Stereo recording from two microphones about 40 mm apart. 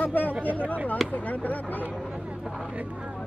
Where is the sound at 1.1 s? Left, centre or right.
Left.